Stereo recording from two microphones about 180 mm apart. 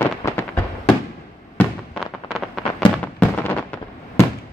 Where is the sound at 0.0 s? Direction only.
15° left (ahead or behind).